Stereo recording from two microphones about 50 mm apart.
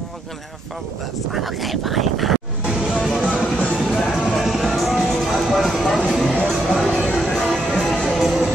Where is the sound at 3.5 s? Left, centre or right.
Centre.